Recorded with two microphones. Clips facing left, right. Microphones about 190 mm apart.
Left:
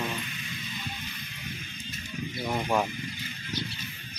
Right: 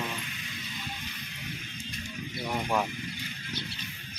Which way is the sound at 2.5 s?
10° left (ahead or behind).